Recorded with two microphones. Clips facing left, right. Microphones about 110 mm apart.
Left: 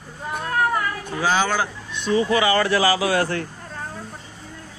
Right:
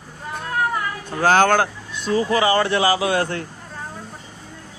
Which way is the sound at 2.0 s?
40° right (ahead or behind).